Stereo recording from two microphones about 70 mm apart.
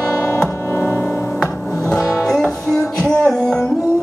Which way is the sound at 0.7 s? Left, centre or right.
Left.